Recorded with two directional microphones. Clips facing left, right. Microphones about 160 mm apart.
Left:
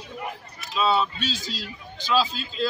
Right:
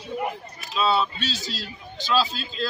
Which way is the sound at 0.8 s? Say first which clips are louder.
Even; 10° left (ahead or behind).